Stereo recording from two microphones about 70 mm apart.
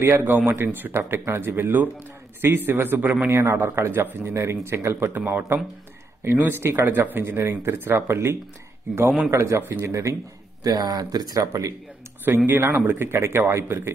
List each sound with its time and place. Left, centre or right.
0.0 s a man's voice: right
10.6 s speech: right
12.4 s speech: right